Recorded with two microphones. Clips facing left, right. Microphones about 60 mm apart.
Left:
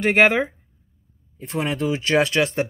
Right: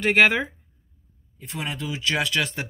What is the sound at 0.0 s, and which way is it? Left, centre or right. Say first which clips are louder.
Speech: left 2 dB; left.